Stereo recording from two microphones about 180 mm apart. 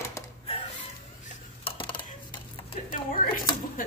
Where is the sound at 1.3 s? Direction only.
30° left (ahead or behind).